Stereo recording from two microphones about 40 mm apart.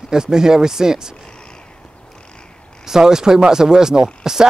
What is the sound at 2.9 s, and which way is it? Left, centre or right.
Speech, centre.